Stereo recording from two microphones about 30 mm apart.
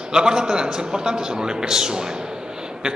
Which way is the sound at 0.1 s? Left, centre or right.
Right.